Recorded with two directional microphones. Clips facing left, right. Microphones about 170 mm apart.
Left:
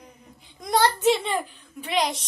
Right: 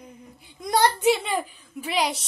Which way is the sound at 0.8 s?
15° right (ahead or behind).